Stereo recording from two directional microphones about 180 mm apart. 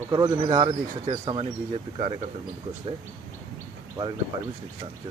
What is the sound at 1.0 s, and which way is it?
Speech, 30° right (ahead or behind).